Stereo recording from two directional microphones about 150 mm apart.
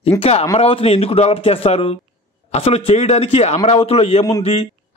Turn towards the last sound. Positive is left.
turn(degrees=45)  # may be behind; listen again after turning